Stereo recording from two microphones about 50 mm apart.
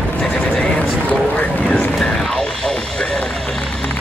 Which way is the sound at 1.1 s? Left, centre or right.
Left.